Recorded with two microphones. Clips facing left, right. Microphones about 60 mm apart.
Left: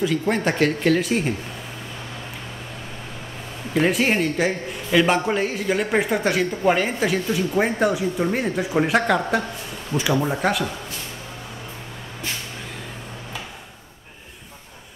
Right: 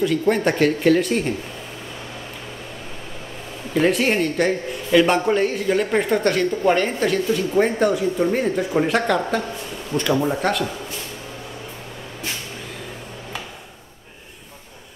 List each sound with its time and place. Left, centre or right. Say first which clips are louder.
0.0 s a man's voice: right 3 dB; centre
3.7 s a man's voice: right 1 dB; centre